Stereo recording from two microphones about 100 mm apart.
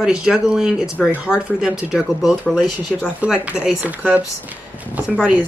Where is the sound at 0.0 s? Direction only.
5° right (ahead or behind).